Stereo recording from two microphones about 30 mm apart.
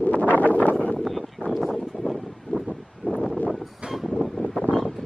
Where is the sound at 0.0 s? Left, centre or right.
Left.